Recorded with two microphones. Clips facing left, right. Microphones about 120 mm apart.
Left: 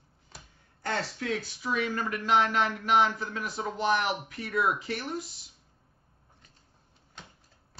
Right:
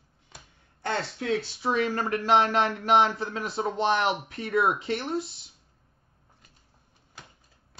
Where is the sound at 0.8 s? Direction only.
25° right (ahead or behind).